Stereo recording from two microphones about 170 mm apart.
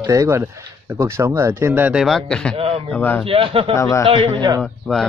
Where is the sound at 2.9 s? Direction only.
10° left (ahead or behind).